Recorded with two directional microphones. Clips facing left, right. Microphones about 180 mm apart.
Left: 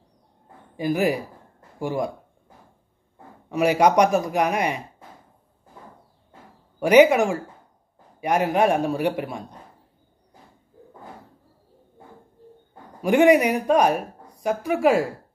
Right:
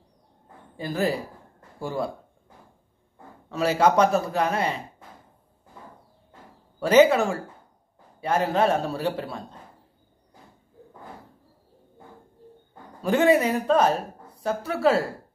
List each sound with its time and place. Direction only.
0.7 s speech: 15° left (ahead or behind)
3.4 s speech: 15° left (ahead or behind)
6.8 s speech: 15° left (ahead or behind)
13.0 s speech: 15° left (ahead or behind)